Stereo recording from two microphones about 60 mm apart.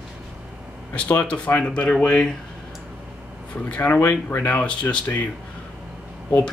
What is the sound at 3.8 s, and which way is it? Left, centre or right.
Speech, left.